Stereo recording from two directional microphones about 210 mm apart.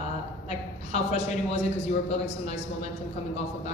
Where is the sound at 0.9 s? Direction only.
30° left (ahead or behind).